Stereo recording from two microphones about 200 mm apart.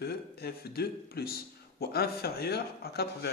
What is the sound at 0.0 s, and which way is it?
Speech, 50° left (ahead or behind).